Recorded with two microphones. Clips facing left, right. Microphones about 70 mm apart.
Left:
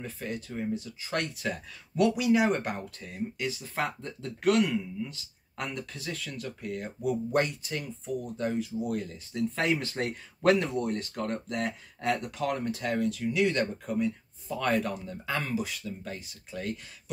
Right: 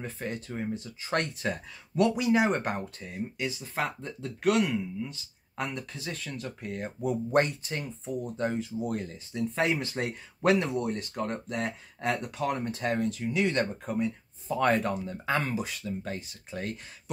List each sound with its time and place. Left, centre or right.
0.0 s speech: right
3.0 s speech: centre; by 9.2 s right
9.3 s speech: centre
11.6 s speech: centre
12.4 s speech: right